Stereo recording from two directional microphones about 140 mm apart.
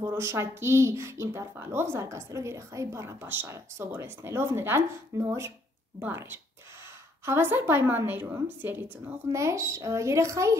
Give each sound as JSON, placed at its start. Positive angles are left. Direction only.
{"t": 0.0, "sound": "a woman's voice", "side_deg": -20}